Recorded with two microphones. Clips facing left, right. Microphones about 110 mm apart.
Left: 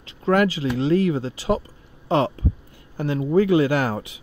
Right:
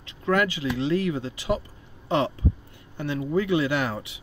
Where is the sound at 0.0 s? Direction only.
30° left (ahead or behind).